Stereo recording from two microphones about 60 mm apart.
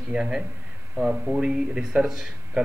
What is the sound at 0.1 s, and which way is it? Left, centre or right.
A man's voice, centre.